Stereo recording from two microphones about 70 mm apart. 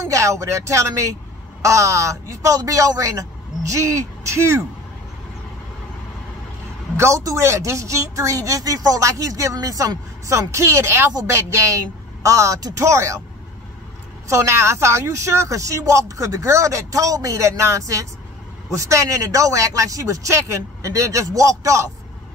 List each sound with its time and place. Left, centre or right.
0.0 s speech: right
7.0 s speech: right
14.3 s speech: right